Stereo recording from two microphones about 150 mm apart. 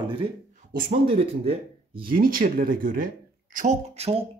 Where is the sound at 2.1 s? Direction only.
65° right (ahead or behind).